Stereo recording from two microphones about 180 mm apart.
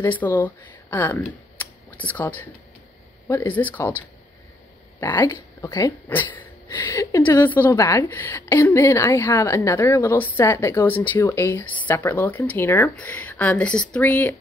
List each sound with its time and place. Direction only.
0.0 s a woman's voice: 10° left (ahead or behind)
5.0 s a woman's voice: 15° left (ahead or behind)